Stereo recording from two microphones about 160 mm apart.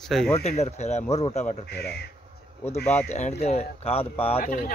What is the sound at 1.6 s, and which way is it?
Speech, 85° left.